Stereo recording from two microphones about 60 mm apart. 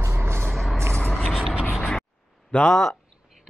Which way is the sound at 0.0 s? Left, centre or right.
Right.